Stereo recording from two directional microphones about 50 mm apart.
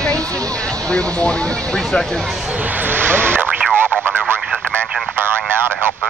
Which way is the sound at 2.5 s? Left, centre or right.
Right.